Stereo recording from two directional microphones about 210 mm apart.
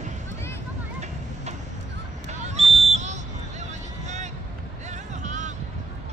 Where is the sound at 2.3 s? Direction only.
30° right (ahead or behind).